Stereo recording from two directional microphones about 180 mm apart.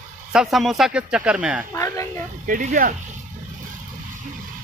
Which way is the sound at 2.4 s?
45° right (ahead or behind).